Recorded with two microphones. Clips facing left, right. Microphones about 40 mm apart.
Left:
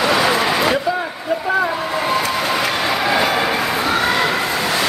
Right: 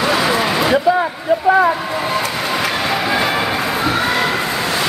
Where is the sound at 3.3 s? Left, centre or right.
Centre.